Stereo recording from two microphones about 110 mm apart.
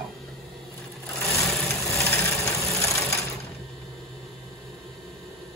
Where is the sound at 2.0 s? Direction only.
25° left (ahead or behind).